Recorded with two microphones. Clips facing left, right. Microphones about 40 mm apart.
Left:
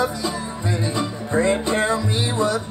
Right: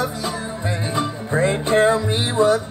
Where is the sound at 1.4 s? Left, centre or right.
Right.